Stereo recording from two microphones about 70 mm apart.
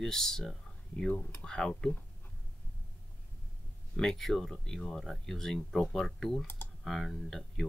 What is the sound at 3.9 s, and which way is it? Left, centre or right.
Speech, centre.